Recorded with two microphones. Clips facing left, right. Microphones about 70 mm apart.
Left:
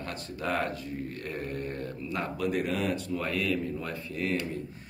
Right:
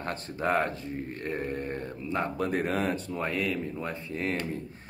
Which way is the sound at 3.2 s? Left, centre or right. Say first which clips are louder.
Even; right.